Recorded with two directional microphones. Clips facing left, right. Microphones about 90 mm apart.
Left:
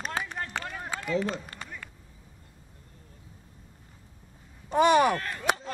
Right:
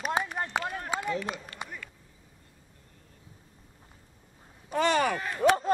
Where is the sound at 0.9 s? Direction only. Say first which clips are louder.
Right 5 dB; 20° right (ahead or behind).